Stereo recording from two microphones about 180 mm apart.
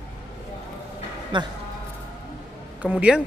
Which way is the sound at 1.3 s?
25° right (ahead or behind).